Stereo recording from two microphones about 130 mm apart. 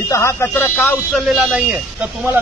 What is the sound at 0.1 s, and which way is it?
Speech, 20° left (ahead or behind).